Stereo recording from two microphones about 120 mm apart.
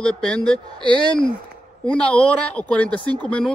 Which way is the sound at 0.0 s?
5° left (ahead or behind).